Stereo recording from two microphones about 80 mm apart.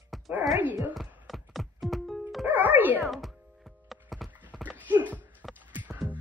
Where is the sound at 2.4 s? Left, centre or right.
Right.